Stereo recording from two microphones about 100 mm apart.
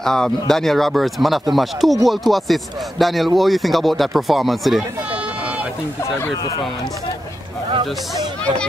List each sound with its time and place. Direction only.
0.0 s speech: 5° left (ahead or behind)
7.7 s speech: 55° right (ahead or behind)